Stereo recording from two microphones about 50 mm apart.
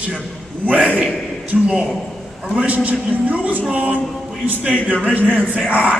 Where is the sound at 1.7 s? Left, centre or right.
Centre.